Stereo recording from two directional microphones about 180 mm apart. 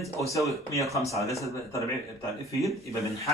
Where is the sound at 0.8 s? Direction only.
15° left (ahead or behind).